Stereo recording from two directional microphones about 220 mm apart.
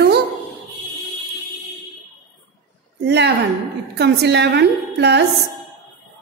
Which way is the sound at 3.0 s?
50° right (ahead or behind).